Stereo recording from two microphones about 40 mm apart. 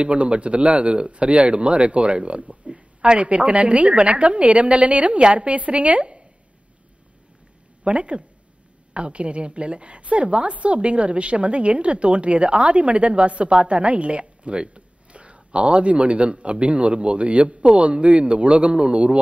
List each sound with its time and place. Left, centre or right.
0.0 s a woman's voice: right
7.8 s a woman's voice: right